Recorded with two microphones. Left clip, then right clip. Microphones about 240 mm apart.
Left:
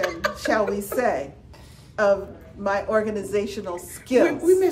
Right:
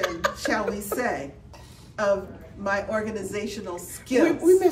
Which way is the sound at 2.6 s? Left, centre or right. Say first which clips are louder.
Left 4 dB; centre.